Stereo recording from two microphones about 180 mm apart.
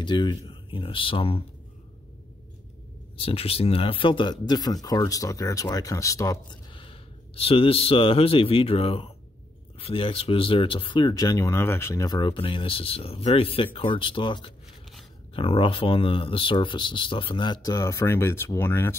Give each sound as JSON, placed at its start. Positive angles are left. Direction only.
{"t": 0.0, "sound": "speech", "side_deg": 25}
{"t": 3.2, "sound": "speech", "side_deg": 30}